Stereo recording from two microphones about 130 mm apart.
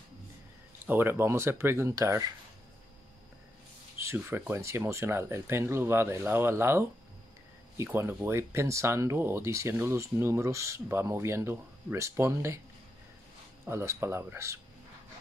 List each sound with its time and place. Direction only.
0.8 s speech: 15° right (ahead or behind)
4.0 s speech: 20° right (ahead or behind)
13.7 s speech: 20° right (ahead or behind)